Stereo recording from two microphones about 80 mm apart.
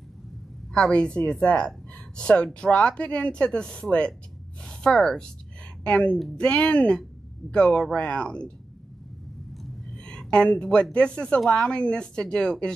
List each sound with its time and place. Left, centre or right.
0.7 s a woman's voice: centre
9.9 s speech: centre